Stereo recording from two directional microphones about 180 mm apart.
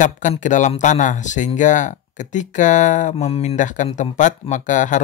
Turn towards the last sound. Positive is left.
turn(degrees=45)  # may be behind; listen again after turning